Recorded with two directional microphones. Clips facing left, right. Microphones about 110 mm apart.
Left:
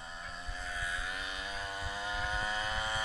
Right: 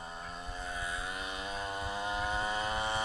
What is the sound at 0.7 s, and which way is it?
Vehicle, 25° right (ahead or behind).